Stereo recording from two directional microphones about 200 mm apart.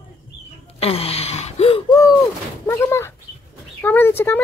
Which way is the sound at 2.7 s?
15° left (ahead or behind).